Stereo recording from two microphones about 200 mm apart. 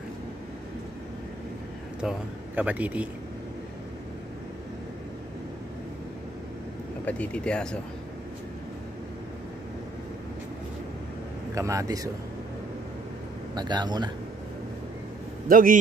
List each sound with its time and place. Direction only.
2.0 s speech: 5° right (ahead or behind)
7.1 s speech: 5° left (ahead or behind)
11.5 s speech: 15° right (ahead or behind)
13.6 s speech: 20° right (ahead or behind)
15.4 s a man's voice: 45° right (ahead or behind)